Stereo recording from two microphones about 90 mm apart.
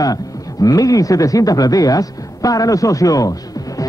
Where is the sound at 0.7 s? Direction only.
40° left (ahead or behind).